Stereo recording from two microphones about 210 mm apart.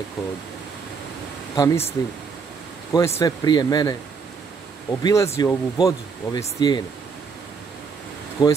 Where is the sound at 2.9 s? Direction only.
15° left (ahead or behind).